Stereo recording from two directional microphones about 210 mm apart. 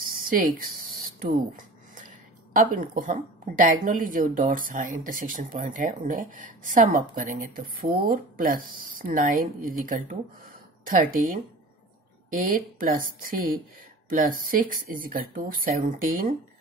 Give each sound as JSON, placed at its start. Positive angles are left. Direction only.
{"t": 0.2, "sound": "speech", "side_deg": -40}